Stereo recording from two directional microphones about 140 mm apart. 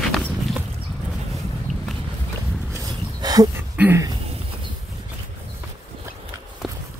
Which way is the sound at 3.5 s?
15° right (ahead or behind).